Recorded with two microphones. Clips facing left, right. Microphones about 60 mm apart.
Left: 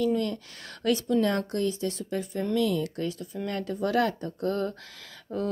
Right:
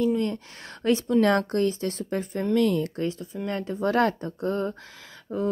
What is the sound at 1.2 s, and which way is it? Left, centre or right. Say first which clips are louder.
A woman's voice: right 5 dB; right.